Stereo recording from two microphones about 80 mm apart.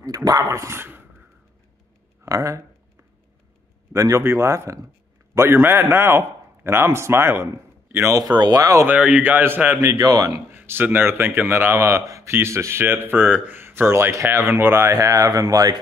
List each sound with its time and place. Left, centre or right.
0.0 s speech: right
2.2 s speech: right
3.9 s a man's voice: right
8.2 s speech: right
8.8 s a man's voice: centre
9.8 s speech: right
10.5 s a man's voice: right